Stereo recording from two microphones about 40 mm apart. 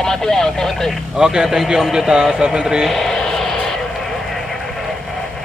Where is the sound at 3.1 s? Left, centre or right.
Centre.